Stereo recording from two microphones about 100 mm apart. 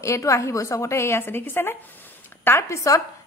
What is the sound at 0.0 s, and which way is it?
A woman's voice, 30° left (ahead or behind).